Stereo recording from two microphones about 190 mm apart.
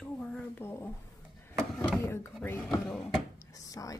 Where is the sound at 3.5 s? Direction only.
20° left (ahead or behind).